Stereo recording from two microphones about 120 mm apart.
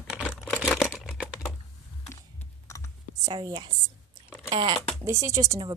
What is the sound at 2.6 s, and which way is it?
Computer keyboard, 25° left (ahead or behind).